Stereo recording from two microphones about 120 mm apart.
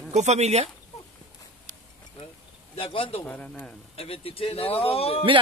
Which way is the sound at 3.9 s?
55° left (ahead or behind).